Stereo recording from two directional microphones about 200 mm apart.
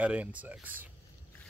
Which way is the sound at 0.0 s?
5° right (ahead or behind).